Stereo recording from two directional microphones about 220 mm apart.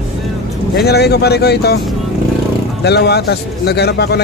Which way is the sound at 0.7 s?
45° left (ahead or behind).